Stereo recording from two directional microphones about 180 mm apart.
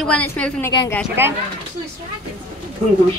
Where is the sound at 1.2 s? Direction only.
10° right (ahead or behind).